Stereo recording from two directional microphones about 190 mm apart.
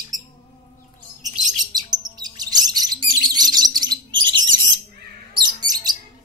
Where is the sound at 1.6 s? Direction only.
20° right (ahead or behind).